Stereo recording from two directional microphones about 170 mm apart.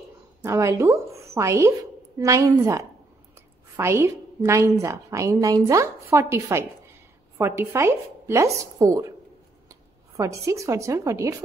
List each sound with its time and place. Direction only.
0.4 s a woman's voice: 15° right (ahead or behind)
10.1 s a woman's voice: 20° right (ahead or behind)